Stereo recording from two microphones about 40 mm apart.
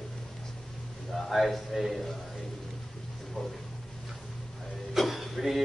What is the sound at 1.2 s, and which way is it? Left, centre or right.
Speech, centre.